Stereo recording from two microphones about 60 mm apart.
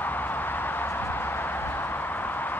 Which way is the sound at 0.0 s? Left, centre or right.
Left.